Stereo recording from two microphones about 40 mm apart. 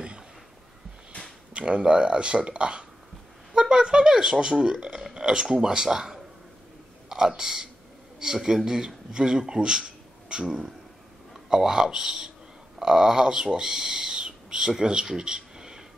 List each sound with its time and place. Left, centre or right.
1.5 s a man's voice: right